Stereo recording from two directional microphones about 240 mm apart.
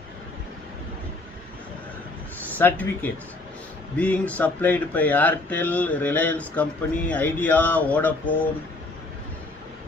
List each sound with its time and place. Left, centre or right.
2.4 s a man's voice: centre